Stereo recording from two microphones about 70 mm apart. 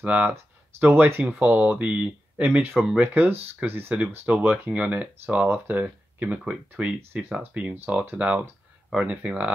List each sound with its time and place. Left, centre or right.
0.0 s speech: right
1.2 s speech: centre
3.9 s speech: right